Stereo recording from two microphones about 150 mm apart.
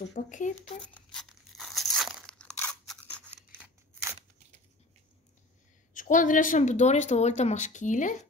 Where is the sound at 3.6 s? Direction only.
15° right (ahead or behind).